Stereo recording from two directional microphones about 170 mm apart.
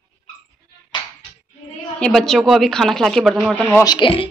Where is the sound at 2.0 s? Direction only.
5° left (ahead or behind).